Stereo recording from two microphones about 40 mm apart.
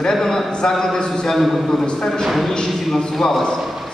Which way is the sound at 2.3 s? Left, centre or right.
Centre.